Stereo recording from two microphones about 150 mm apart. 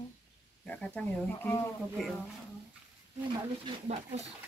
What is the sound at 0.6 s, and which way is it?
Speech, 5° left (ahead or behind).